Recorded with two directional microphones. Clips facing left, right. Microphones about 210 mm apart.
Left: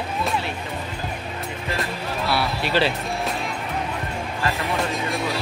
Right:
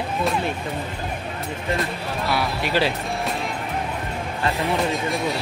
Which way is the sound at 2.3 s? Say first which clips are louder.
Even; 15° right (ahead or behind).